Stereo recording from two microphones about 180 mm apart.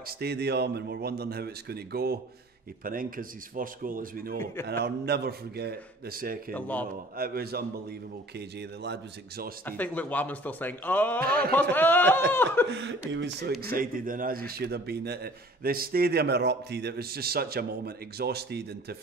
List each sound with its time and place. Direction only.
0.0 s a man's voice: 65° right (ahead or behind)
4.6 s a man's voice: 65° right (ahead or behind)
6.5 s speech: 10° left (ahead or behind)
7.2 s a man's voice: 55° right (ahead or behind)
8.4 s speech: 70° right (ahead or behind)
9.7 s speech: 10° left (ahead or behind)
11.2 s a man's voice: 60° right (ahead or behind)
11.7 s speech: 10° left (ahead or behind)
12.7 s speech: 85° right
13.6 s speech: 55° right (ahead or behind)
14.5 s a man's voice: 60° right (ahead or behind)